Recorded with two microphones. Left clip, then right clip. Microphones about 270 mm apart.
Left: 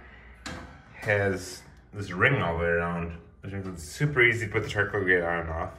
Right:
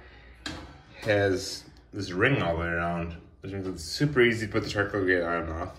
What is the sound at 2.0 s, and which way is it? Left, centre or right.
Speech, centre.